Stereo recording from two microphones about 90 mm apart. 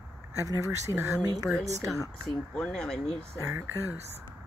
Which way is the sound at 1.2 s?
45° right (ahead or behind).